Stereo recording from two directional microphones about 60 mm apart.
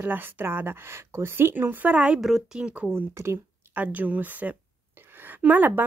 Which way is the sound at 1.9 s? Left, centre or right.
Centre.